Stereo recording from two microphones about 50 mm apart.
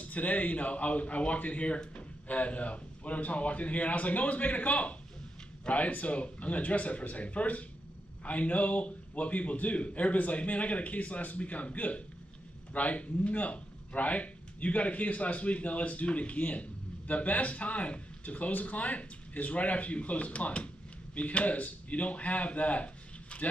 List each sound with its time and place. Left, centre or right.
0.0 s speech: left